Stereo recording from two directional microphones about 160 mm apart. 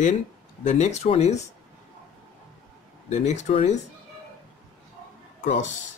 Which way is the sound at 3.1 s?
50° left (ahead or behind).